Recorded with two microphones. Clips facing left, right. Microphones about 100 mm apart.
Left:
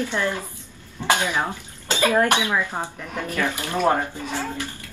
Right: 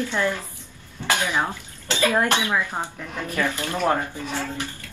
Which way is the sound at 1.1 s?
15° left (ahead or behind).